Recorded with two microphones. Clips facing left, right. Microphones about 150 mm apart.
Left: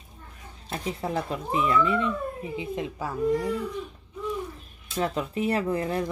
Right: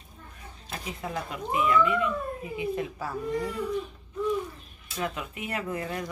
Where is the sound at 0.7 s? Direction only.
30° left (ahead or behind).